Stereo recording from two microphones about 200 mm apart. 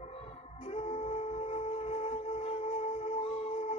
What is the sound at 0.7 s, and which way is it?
Music, 30° left (ahead or behind).